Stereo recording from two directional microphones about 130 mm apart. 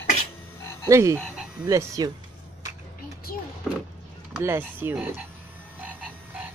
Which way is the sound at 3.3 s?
90° left.